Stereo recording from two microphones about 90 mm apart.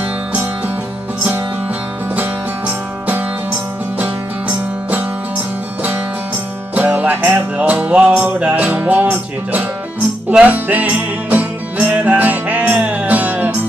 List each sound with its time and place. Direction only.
2.1 s music: 20° right (ahead or behind)
6.7 s music: 15° right (ahead or behind)